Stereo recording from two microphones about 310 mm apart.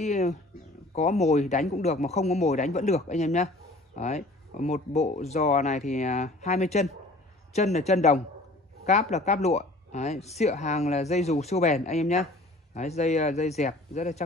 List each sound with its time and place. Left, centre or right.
0.0 s speech: left